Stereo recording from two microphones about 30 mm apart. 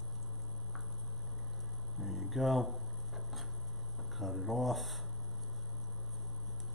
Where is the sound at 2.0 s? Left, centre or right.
Centre.